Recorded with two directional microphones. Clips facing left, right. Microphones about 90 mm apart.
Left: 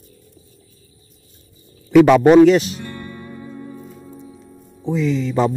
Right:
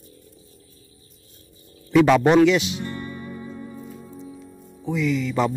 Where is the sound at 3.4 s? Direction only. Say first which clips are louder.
Left 2 dB; 20° left (ahead or behind).